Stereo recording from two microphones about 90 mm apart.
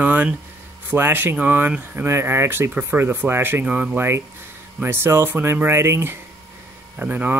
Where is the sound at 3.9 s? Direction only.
25° right (ahead or behind).